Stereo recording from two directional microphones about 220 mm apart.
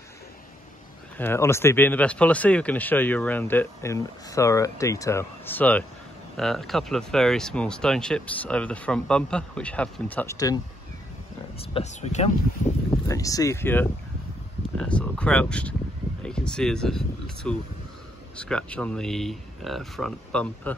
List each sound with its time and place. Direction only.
1.1 s speech: 10° left (ahead or behind)
11.7 s speech: 30° left (ahead or behind)
13.1 s speech: 15° left (ahead or behind)